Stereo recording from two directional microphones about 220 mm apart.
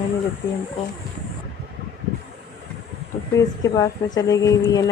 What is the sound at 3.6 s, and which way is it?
A woman's voice, 15° left (ahead or behind).